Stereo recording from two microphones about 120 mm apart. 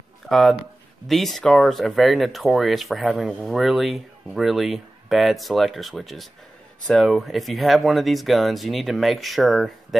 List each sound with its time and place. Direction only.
0.3 s speech: centre (ahead or behind)